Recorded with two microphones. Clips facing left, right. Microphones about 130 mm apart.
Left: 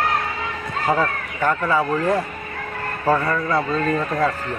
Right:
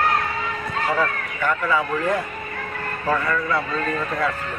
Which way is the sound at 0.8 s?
35° left (ahead or behind).